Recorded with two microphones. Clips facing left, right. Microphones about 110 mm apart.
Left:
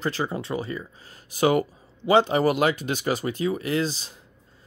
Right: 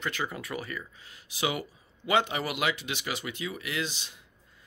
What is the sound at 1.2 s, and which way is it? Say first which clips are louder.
Speech: left 10 dB; 45° left (ahead or behind).